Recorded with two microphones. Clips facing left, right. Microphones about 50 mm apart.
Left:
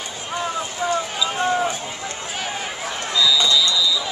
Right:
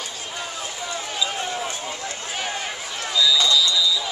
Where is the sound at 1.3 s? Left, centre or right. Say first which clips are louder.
Left 7 dB; left.